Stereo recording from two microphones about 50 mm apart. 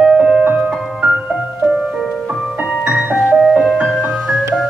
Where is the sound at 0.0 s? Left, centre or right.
Centre.